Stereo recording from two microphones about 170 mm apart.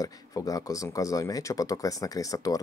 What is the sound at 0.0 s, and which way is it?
Speech, 20° left (ahead or behind).